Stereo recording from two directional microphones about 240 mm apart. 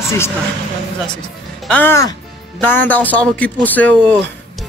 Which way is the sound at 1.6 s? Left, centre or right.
Centre.